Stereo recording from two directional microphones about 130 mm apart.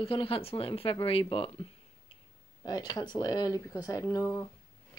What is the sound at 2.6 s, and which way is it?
Speech, 30° left (ahead or behind).